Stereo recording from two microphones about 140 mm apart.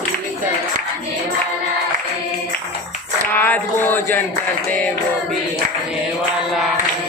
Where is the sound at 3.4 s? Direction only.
15° left (ahead or behind).